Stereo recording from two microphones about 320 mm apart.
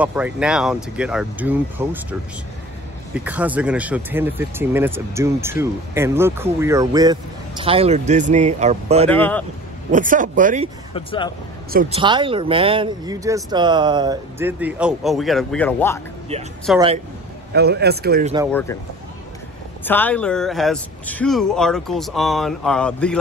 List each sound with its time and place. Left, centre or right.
0.0 s speech: centre
3.3 s speech: centre
9.1 s speech: centre
9.8 s speech: right
10.9 s speech: centre
11.7 s speech: right
12.0 s speech: centre
17.5 s speech: right
18.5 s speech: centre
19.8 s speech: centre